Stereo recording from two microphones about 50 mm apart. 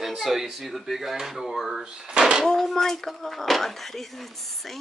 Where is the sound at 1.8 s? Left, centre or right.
Centre.